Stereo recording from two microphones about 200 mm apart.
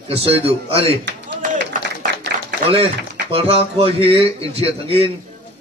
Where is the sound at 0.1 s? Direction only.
30° right (ahead or behind).